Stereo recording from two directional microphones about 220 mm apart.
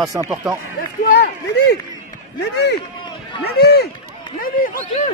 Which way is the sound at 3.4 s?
45° left (ahead or behind).